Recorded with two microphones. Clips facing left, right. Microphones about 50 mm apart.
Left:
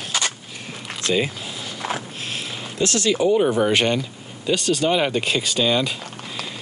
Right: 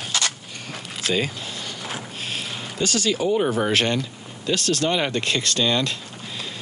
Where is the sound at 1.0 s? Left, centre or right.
Centre.